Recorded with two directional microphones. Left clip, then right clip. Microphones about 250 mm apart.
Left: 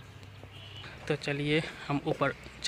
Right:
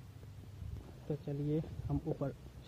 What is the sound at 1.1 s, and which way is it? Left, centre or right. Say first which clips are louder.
A man's voice: left 9 dB; left.